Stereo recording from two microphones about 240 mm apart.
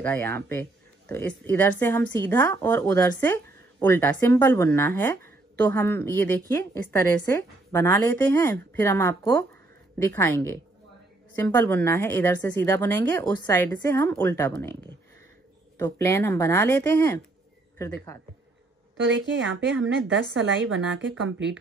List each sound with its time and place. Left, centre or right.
0.0 s speech: centre
15.8 s speech: centre
19.0 s a woman's voice: right